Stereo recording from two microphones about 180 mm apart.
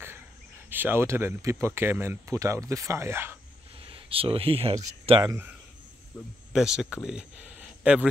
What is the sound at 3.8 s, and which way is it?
Speech, 30° right (ahead or behind).